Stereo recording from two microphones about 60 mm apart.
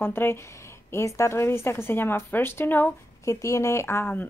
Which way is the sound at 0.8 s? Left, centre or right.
Left.